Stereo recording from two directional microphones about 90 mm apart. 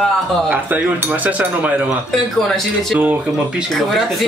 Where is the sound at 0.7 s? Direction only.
20° right (ahead or behind).